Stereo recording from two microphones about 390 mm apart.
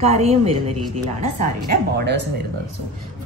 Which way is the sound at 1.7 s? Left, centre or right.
Right.